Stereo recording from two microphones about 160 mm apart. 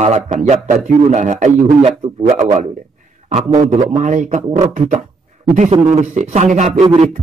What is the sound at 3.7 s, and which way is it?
A man's voice, 50° right (ahead or behind).